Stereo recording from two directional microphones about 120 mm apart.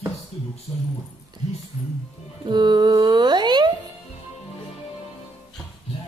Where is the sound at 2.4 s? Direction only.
40° right (ahead or behind).